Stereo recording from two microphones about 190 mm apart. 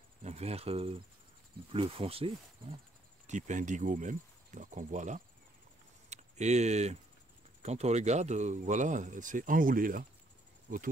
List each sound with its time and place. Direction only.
0.2 s speech: 35° right (ahead or behind)
3.3 s speech: 40° right (ahead or behind)
6.0 s a sound: 35° right (ahead or behind)
7.6 s speech: 35° right (ahead or behind)